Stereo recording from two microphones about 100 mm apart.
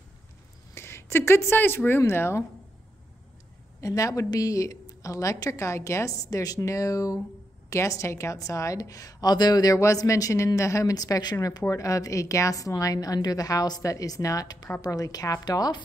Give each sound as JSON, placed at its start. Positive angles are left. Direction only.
{"t": 0.7, "sound": "a woman's voice", "side_deg": 25}
{"t": 3.8, "sound": "a woman's voice", "side_deg": 35}